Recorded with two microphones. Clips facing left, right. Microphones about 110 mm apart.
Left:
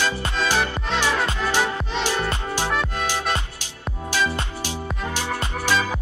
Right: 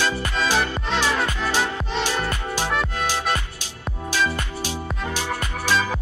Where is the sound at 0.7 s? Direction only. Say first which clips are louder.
Right 1 dB; centre (ahead or behind).